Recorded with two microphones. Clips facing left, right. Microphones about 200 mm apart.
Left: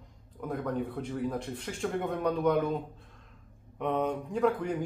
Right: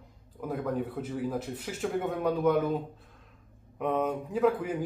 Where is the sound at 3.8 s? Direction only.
5° right (ahead or behind).